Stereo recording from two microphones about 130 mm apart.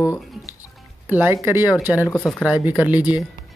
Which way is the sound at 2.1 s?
5° left (ahead or behind).